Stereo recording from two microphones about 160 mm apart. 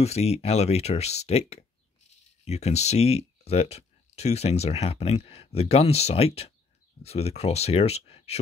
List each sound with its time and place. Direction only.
0.0 s speech: 40° left (ahead or behind)